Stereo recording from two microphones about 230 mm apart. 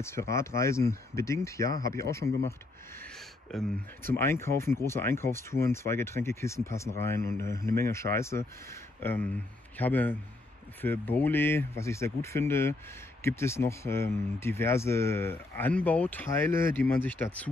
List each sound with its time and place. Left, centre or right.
0.0 s speech: centre
1.7 s speech: right
2.0 s speech: centre